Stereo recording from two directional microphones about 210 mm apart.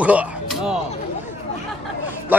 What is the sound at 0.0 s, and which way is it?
Speech, 5° right (ahead or behind).